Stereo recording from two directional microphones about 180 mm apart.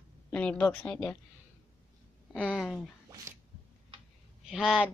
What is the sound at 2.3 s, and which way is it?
Speech, 5° left (ahead or behind).